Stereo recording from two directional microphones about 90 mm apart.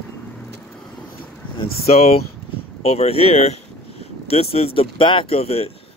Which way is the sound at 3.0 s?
90° left.